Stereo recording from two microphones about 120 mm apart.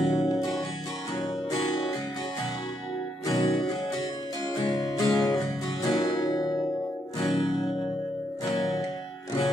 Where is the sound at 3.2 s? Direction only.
30° left (ahead or behind).